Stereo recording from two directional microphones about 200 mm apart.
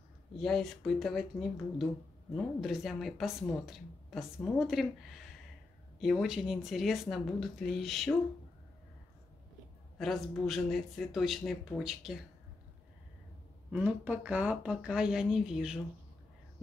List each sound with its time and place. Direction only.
0.4 s speech: centre (ahead or behind)
5.9 s speech: centre (ahead or behind)
9.9 s speech: centre (ahead or behind)
13.7 s speech: 10° right (ahead or behind)